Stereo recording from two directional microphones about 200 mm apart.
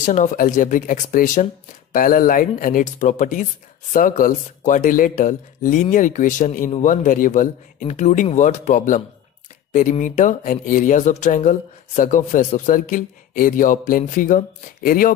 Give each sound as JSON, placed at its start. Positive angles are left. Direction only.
{"t": 0.0, "sound": "speech", "side_deg": 40}